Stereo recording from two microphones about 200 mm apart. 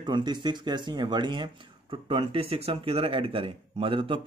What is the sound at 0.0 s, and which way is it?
Speech, 20° right (ahead or behind).